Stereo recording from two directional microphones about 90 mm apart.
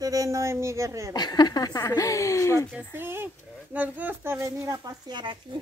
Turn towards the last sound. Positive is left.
turn(degrees=-40)  # may be behind; listen again after turning